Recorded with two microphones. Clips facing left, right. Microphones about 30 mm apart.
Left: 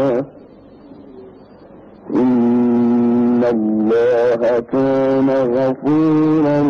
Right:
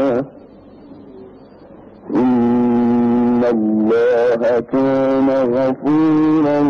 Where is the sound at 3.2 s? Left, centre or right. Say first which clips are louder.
Even; centre.